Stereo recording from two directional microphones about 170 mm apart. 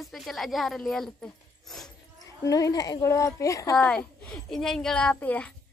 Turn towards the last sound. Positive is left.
turn(degrees=10)  # may be behind; listen again after turning